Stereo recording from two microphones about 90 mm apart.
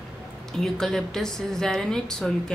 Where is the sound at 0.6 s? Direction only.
5° left (ahead or behind).